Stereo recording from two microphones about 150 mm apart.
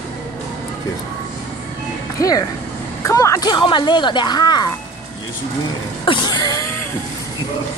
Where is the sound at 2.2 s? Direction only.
25° left (ahead or behind).